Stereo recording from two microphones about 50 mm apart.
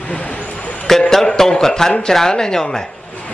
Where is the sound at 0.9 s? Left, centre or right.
Centre.